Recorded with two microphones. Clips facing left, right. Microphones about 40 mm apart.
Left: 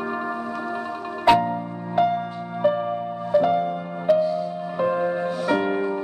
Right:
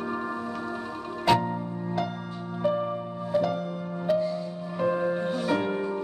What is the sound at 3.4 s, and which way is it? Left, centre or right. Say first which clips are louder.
Music: left 7 dB; left.